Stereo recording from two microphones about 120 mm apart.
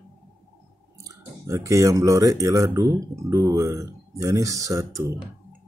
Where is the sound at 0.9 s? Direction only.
25° right (ahead or behind).